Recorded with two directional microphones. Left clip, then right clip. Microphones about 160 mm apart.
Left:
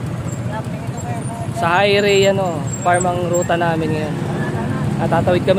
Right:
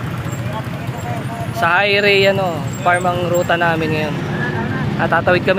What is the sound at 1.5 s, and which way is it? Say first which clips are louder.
Speech: right 1 dB; 15° left (ahead or behind).